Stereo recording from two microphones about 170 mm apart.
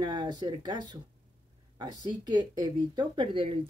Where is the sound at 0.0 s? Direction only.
25° right (ahead or behind).